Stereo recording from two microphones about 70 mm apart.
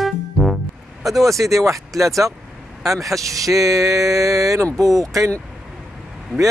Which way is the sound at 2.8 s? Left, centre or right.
Right.